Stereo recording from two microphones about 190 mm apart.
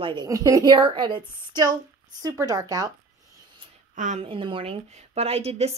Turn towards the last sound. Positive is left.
turn(degrees=-35)  # may be behind; listen again after turning